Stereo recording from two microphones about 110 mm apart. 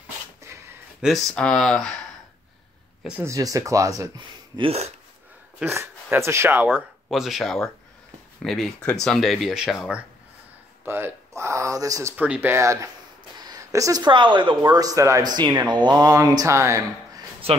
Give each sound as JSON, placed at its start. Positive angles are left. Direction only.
{"t": 1.0, "sound": "speech", "side_deg": 0}
{"t": 3.2, "sound": "speech", "side_deg": -30}
{"t": 4.6, "sound": "speech", "side_deg": -70}
{"t": 5.8, "sound": "speech", "side_deg": -25}
{"t": 7.1, "sound": "speech", "side_deg": 0}
{"t": 10.9, "sound": "speech", "side_deg": -20}
{"t": 12.2, "sound": "speech", "side_deg": -15}
{"t": 13.4, "sound": "a sound", "side_deg": -35}
{"t": 14.0, "sound": "a woman's voice", "side_deg": -45}
{"t": 14.6, "sound": "speech", "side_deg": -35}